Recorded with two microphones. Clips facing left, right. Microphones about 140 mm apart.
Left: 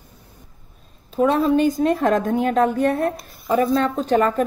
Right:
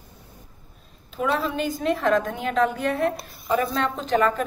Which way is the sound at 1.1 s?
40° left (ahead or behind).